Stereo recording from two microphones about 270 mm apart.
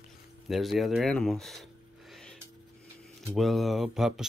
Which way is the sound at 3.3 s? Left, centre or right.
Centre.